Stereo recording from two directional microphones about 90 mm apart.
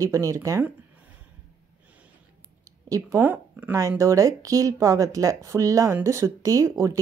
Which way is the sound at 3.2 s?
20° right (ahead or behind).